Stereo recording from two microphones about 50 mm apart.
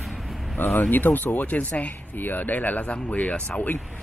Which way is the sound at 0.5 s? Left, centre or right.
Left.